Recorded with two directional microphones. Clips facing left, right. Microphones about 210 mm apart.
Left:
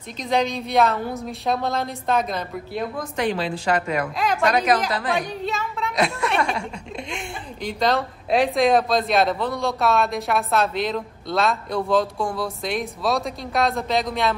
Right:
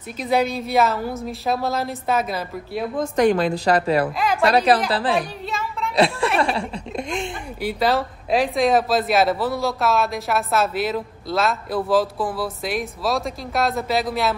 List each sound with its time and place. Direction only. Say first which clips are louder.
0.2 s speech: right 2 dB; 5° right (ahead or behind)
3.2 s a woman's voice: right 6 dB; 45° right (ahead or behind)
5.1 s a sound: right 1 dB; centre (ahead or behind)
5.9 s a woman's voice: right 4 dB; 30° right (ahead or behind)
7.6 s speech: right 1 dB; 5° right (ahead or behind)